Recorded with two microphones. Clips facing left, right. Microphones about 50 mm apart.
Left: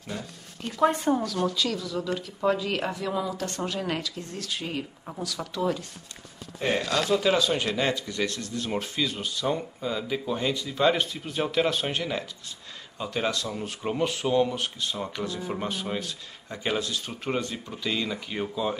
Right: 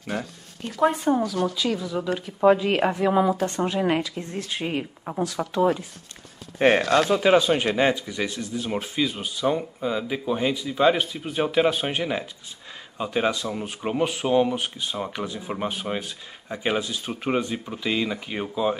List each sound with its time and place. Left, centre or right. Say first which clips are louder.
0.1 s speech: right 7 dB; right
0.7 s speech: right 2 dB; centre; by 3.4 s right
3.4 s speech: right 7 dB; right
6.9 s speech: right 5 dB; right